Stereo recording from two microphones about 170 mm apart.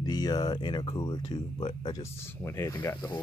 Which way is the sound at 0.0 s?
20° left (ahead or behind).